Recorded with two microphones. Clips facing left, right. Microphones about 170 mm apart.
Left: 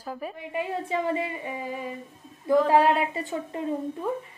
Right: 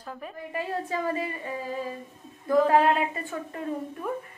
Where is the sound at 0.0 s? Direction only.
10° left (ahead or behind).